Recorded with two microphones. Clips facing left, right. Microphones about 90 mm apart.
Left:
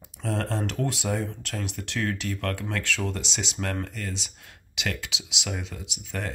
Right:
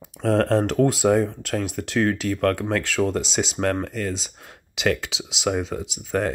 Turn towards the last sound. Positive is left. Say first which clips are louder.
# right 10 dB
turn(degrees=-40)  # may be behind; listen again after turning